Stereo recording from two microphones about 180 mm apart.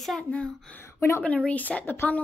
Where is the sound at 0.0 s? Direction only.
5° left (ahead or behind).